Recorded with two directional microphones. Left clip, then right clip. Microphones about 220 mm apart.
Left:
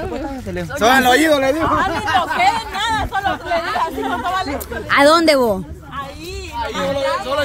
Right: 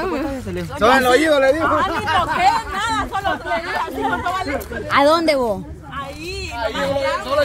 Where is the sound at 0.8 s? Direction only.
50° left (ahead or behind).